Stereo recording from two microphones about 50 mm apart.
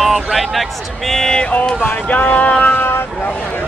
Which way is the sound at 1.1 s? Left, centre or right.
Centre.